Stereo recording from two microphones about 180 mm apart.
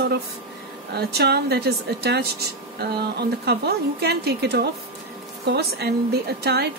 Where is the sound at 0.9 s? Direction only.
65° right (ahead or behind).